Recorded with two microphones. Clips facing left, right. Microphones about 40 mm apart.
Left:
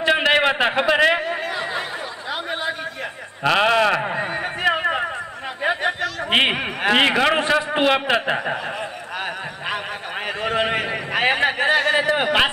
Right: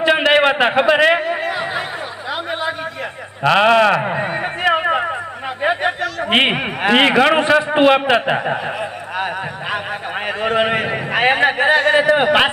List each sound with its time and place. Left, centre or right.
0.2 s a sound: centre
3.4 s speech: centre
5.6 s chatter: centre
5.9 s a man's voice: centre
10.2 s a man's voice: centre